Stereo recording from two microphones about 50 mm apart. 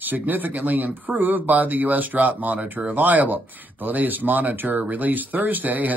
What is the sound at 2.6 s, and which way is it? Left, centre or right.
Speech, centre.